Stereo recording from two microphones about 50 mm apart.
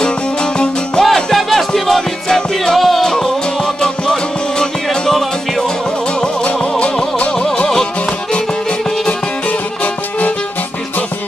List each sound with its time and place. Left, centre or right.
0.0 s music: centre
1.0 s music: centre
6.2 s music: left